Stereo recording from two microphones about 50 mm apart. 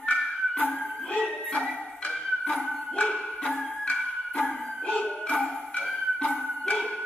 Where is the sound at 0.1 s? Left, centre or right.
Left.